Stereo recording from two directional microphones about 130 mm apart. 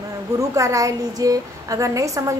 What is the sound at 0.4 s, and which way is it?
A woman's voice, 25° right (ahead or behind).